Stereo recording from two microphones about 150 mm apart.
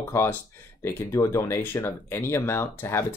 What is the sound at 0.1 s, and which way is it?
Speech, 15° left (ahead or behind).